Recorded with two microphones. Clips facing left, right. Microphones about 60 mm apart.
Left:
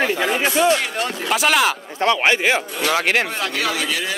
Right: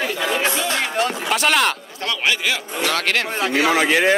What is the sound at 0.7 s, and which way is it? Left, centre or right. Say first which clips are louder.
Speech: right 2 dB; right.